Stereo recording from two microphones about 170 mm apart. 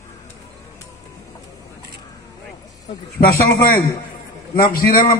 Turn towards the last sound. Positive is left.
turn(degrees=55)  # may be behind; listen again after turning